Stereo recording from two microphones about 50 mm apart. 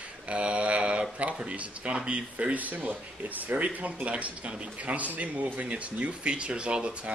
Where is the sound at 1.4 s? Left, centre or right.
Right.